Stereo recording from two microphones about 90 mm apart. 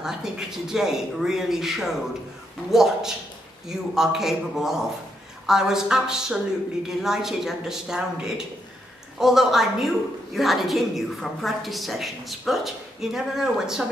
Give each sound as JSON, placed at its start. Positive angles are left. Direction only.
{"t": 0.0, "sound": "a woman's voice", "side_deg": -5}